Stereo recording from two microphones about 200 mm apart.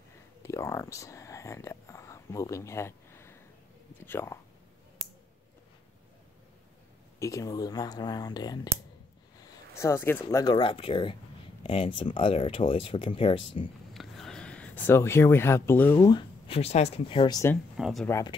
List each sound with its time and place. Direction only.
0.4 s speech: 15° left (ahead or behind)
7.2 s speech: 15° left (ahead or behind)
9.8 s speech: 15° left (ahead or behind)
13.9 s speech: centre (ahead or behind); by 17.6 s 15° left (ahead or behind)
17.7 s speech: 5° right (ahead or behind)
18.0 s speech: 15° left (ahead or behind)